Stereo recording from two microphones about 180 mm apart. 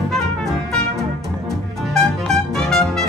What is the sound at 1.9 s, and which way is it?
Music, centre (ahead or behind).